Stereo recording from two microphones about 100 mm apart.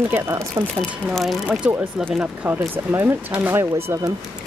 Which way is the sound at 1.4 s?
15° right (ahead or behind).